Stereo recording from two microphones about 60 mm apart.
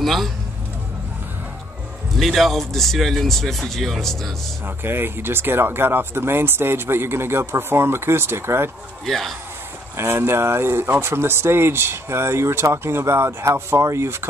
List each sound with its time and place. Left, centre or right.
0.0 s speech: centre
2.1 s speech: centre
4.6 s speech: right
9.0 s speech: centre
9.9 s speech: right